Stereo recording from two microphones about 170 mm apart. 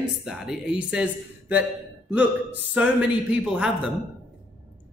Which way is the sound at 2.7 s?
5° right (ahead or behind).